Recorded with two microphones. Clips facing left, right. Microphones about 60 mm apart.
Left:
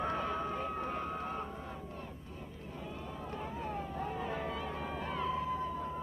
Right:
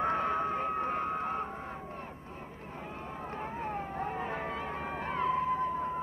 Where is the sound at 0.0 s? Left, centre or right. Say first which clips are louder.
Right 5 dB; right.